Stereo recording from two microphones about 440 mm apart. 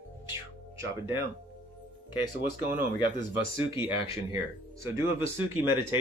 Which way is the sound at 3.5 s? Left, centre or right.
Centre.